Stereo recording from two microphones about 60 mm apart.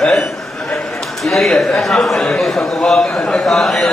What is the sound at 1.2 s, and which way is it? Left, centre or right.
A man's voice, centre.